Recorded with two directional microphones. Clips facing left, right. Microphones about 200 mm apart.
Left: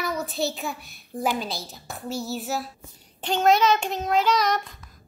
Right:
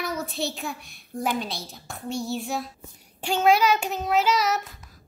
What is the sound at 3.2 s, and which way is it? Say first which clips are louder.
Child singing: even; 10° right (ahead or behind).